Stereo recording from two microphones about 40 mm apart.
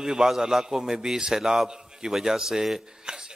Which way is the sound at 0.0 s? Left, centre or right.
Centre.